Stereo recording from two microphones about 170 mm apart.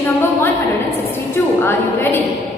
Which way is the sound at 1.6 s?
10° left (ahead or behind).